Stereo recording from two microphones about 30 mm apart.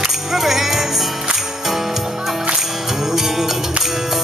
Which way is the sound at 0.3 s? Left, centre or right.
Centre.